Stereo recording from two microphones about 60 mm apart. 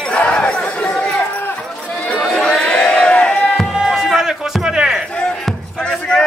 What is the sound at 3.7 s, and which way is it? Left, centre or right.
Music, centre.